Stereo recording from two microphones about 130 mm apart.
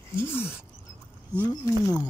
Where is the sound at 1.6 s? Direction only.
25° left (ahead or behind).